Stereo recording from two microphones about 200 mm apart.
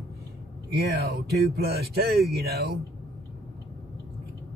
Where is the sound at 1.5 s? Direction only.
50° right (ahead or behind).